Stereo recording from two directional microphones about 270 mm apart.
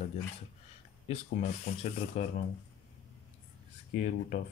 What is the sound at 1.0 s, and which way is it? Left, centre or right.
Speech, left.